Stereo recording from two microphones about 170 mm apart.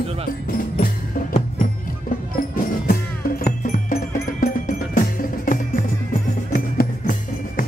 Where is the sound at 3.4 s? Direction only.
50° left (ahead or behind).